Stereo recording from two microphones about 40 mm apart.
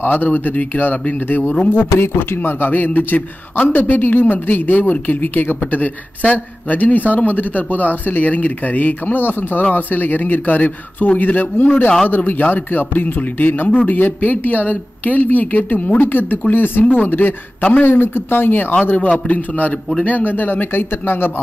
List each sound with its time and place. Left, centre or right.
0.0 s speech: left
1.7 s speech: left
9.6 s speech: left
12.3 s speech: left
17.8 s speech: left
18.9 s a man's voice: left